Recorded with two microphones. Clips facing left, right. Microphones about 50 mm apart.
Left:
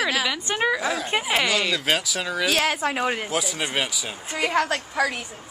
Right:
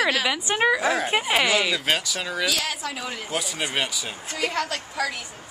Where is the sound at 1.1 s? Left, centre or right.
Centre.